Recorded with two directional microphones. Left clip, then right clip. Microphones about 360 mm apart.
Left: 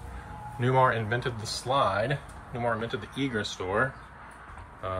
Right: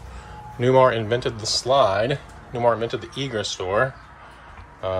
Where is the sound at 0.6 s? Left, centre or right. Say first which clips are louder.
Right 7 dB; right.